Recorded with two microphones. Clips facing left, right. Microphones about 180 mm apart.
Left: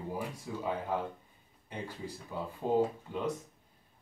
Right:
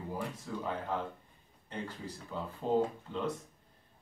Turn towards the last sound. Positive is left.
turn(degrees=10)  # may be behind; listen again after turning